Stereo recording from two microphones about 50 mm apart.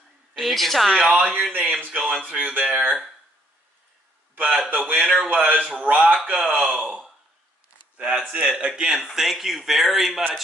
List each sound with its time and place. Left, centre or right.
0.4 s speech: centre
1.5 s a man's voice: right
1.9 s speech: right
4.4 s a man's voice: right
8.2 s speech: centre
9.0 s speech: centre